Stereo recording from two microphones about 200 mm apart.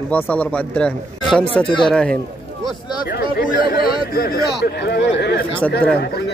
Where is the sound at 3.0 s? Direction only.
45° left (ahead or behind).